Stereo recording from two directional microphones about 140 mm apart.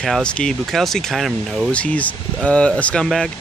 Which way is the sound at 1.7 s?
10° left (ahead or behind).